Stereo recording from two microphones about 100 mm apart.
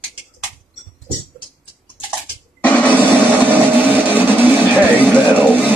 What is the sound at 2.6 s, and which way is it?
Music, 15° left (ahead or behind).